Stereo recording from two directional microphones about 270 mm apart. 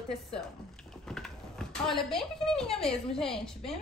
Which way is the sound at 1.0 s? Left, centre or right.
Centre.